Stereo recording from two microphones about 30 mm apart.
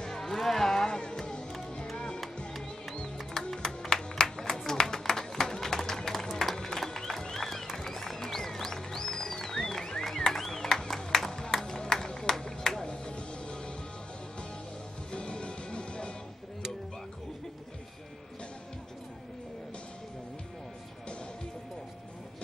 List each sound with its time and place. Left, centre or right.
0.2 s music: centre
0.8 s music: left
3.3 s music: left
4.6 s a sound: centre
6.1 s a sound: centre
6.5 s music: centre
10.1 s a sound: centre
12.8 s music: left
15.0 s music: left